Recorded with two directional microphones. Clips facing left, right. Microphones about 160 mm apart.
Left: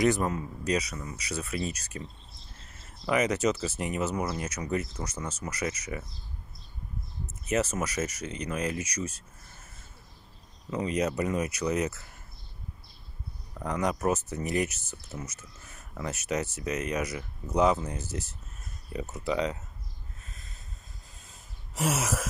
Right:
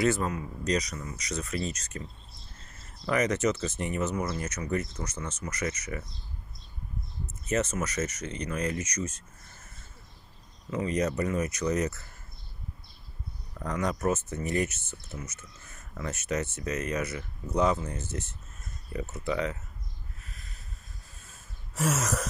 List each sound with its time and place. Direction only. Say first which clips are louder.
0.0 s speech: left 1 dB; 20° left (ahead or behind)
3.1 s speech: even; 10° left (ahead or behind)
7.2 s speech: left 1 dB; 10° left (ahead or behind)
10.8 s speech: even; 10° left (ahead or behind)
13.6 s speech: left 1 dB; 10° left (ahead or behind)
21.2 s a sound: even; 15° left (ahead or behind)